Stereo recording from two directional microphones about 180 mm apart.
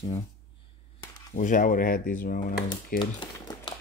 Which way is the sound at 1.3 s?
45° left (ahead or behind).